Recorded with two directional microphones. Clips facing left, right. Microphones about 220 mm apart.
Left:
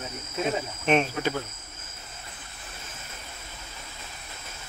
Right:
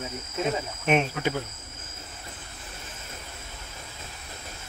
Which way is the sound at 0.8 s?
10° right (ahead or behind).